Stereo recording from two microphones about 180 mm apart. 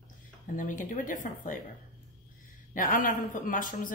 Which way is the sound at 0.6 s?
45° left (ahead or behind).